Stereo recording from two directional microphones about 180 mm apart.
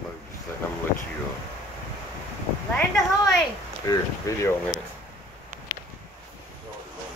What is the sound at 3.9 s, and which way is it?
Speech, 20° left (ahead or behind).